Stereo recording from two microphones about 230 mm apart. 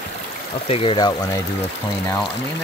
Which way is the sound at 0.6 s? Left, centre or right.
Left.